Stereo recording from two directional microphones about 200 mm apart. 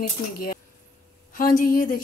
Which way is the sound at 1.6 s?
45° left (ahead or behind).